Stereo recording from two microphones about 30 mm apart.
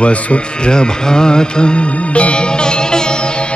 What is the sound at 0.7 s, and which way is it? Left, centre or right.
Music, left.